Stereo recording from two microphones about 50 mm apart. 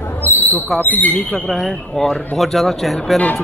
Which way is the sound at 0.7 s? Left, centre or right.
Left.